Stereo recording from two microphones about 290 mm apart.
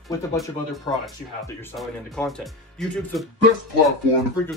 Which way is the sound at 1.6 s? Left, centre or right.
Centre.